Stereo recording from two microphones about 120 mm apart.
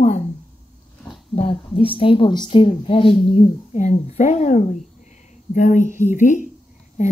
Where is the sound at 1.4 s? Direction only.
50° left (ahead or behind).